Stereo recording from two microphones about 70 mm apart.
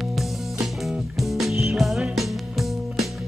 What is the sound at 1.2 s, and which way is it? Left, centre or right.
Music, centre.